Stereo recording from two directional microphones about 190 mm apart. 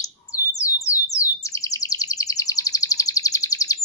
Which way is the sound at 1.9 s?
15° left (ahead or behind).